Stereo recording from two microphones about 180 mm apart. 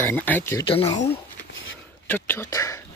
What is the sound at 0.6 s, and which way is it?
Speech, 30° left (ahead or behind).